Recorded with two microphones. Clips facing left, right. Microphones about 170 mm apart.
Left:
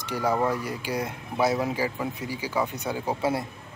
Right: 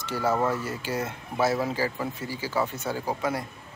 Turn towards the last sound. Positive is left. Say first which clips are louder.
# left 3 dB
turn(degrees=30)  # may be behind; listen again after turning